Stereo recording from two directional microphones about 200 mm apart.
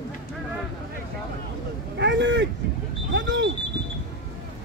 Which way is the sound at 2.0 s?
65° right (ahead or behind).